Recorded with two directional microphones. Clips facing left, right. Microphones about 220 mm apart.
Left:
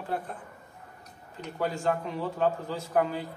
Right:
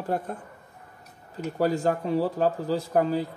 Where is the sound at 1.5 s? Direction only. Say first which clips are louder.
Right 5 dB; 40° right (ahead or behind).